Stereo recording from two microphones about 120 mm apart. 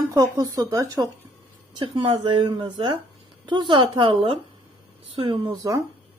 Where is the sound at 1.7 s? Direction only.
40° right (ahead or behind).